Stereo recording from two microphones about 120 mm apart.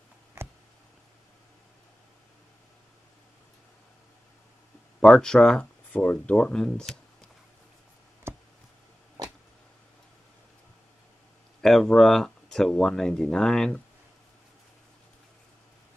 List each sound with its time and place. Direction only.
5.0 s speech: 5° left (ahead or behind)
8.3 s a sound: 20° right (ahead or behind)
11.6 s speech: centre (ahead or behind)